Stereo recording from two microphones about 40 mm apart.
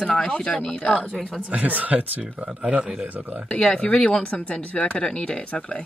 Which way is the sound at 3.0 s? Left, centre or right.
Right.